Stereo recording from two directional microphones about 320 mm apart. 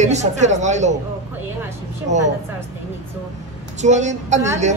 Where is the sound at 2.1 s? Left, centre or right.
Right.